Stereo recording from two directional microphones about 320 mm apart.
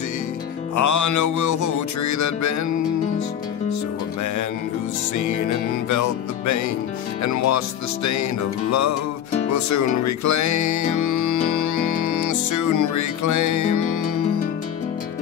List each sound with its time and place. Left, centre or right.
0.7 s music: left
5.1 s music: left